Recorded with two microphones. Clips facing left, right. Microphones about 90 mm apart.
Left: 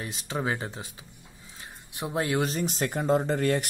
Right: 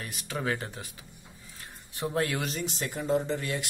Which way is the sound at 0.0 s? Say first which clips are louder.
Left 2 dB; 25° left (ahead or behind).